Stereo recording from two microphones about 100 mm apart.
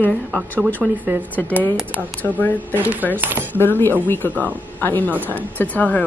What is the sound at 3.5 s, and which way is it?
Speech, 20° left (ahead or behind).